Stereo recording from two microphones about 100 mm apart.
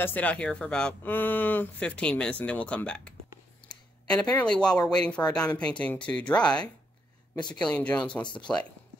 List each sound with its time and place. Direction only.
0.0 s speech: 15° left (ahead or behind)
7.3 s speech: 45° left (ahead or behind)
7.6 s speech: 10° left (ahead or behind)